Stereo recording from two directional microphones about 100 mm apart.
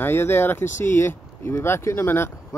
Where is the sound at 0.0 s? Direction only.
20° left (ahead or behind).